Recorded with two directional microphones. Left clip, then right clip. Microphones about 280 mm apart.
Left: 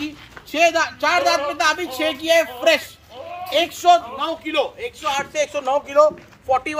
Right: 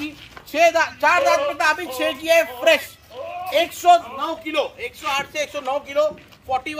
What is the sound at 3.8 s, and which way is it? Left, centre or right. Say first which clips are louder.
Speech: even; centre.